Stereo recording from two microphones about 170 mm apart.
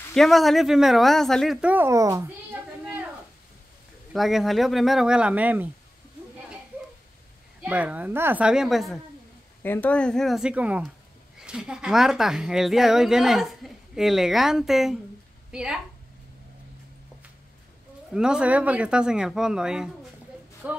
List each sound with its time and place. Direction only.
0.1 s speech: centre (ahead or behind); by 2.3 s 20° right (ahead or behind)
4.1 s speech: centre (ahead or behind)
7.6 s a woman's voice: 10° right (ahead or behind)
9.6 s speech: 10° left (ahead or behind)
18.1 s a woman's voice: 5° right (ahead or behind)